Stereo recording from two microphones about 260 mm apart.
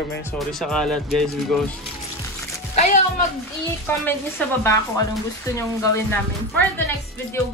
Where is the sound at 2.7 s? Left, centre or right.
Left.